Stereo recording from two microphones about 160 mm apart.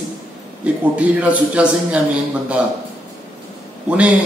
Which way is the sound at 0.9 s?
10° right (ahead or behind).